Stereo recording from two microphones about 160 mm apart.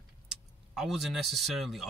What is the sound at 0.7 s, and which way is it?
Speech, 5° right (ahead or behind).